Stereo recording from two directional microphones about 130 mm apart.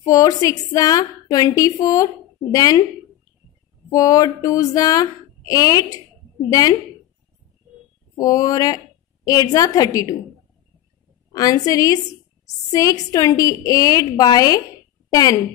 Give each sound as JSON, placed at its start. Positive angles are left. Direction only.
{"t": 0.0, "sound": "a woman's voice", "side_deg": 25}
{"t": 3.9, "sound": "a woman's voice", "side_deg": 30}
{"t": 8.2, "sound": "a woman's voice", "side_deg": 30}
{"t": 11.3, "sound": "a woman's voice", "side_deg": 30}